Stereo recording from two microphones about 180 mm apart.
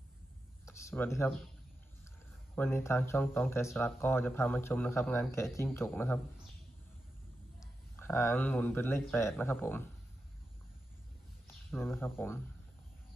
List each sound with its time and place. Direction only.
0.7 s speech: 15° left (ahead or behind)
2.5 s speech: 10° left (ahead or behind)
7.9 s speech: 15° left (ahead or behind)
11.7 s speech: 10° left (ahead or behind)